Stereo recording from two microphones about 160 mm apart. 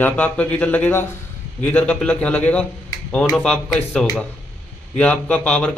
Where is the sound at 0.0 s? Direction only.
10° left (ahead or behind).